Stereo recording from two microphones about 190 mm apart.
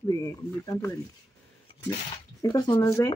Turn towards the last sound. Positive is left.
turn(degrees=15)  # may be behind; listen again after turning